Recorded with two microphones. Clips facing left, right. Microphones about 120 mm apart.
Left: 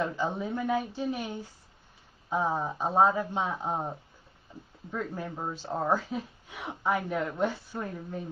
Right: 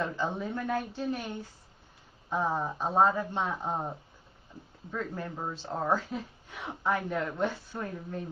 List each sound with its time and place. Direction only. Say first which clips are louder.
0.0 s speech: left 2 dB; 5° left (ahead or behind)